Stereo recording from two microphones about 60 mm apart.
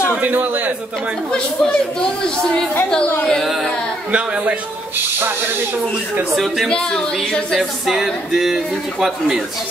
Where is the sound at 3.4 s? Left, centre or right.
Centre.